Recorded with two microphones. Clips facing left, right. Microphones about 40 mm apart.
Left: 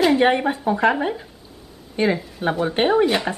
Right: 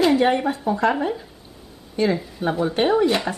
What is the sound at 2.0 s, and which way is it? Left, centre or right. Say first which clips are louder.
Speech: left 1 dB; left.